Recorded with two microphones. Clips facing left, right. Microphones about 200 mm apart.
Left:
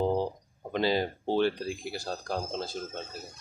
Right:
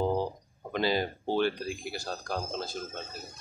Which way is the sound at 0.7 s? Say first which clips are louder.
Left 1 dB; 30° left (ahead or behind).